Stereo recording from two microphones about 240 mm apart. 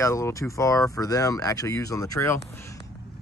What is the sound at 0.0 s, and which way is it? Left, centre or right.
Speech, centre.